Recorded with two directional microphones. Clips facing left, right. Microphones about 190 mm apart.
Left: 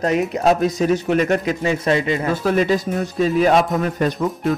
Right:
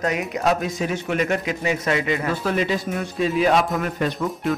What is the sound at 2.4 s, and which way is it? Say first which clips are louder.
A man's voice: left 7 dB; 45° left (ahead or behind).